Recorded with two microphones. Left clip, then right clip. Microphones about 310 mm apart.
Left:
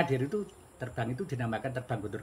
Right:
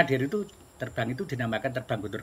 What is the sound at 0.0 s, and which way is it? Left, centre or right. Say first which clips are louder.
Speech: right 5 dB; centre.